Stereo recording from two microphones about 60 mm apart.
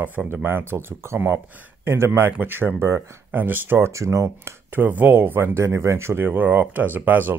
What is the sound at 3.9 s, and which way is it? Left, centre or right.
Speech, right.